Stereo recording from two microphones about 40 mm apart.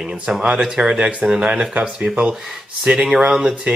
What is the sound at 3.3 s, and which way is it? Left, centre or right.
Speech, centre.